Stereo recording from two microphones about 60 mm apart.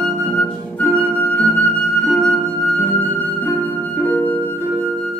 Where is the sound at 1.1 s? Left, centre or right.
Left.